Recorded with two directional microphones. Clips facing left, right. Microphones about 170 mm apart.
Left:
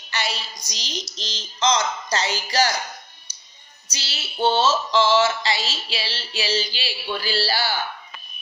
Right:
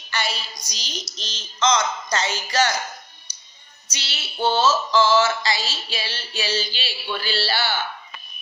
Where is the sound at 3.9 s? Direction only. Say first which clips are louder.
Even; 30° left (ahead or behind).